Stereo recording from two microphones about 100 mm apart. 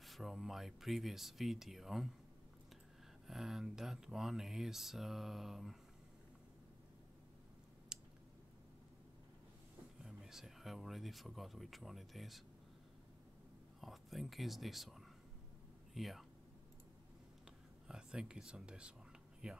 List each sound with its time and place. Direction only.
0.0 s speech: centre (ahead or behind)
3.3 s speech: 5° right (ahead or behind)
7.9 s a sound: 5° right (ahead or behind)
10.0 s speech: 5° right (ahead or behind)
13.7 s speech: centre (ahead or behind)
17.8 s speech: 10° right (ahead or behind)